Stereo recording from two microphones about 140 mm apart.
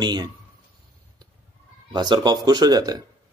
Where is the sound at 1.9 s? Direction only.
30° right (ahead or behind).